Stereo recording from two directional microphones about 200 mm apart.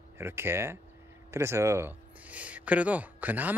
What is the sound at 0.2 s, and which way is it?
Speech, 10° right (ahead or behind).